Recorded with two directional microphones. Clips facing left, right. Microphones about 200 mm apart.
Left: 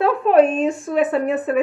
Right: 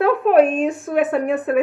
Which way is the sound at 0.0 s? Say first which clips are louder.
Right 1 dB; centre (ahead or behind).